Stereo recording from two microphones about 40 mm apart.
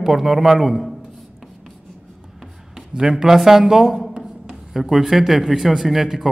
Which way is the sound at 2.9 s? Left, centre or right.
Centre.